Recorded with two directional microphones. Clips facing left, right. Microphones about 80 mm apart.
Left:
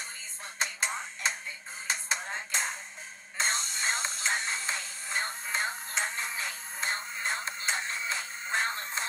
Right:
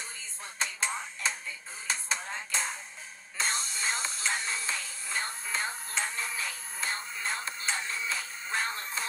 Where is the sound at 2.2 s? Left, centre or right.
Left.